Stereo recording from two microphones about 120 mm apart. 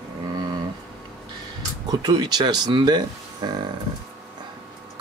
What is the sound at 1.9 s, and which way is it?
Speech, 35° right (ahead or behind).